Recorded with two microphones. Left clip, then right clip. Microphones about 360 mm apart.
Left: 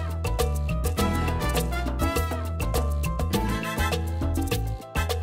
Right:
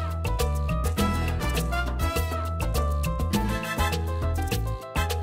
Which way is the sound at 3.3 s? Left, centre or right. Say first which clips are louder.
Left 1 dB; left.